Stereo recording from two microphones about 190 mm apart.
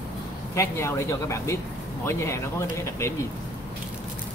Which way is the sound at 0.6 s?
15° left (ahead or behind).